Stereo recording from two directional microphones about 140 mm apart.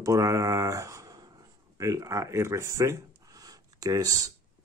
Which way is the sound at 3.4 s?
25° right (ahead or behind).